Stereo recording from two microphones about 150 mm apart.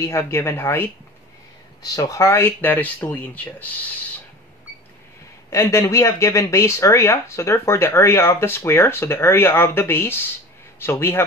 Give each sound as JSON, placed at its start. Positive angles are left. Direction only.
{"t": 0.0, "sound": "speech", "side_deg": 15}
{"t": 5.5, "sound": "speech", "side_deg": 20}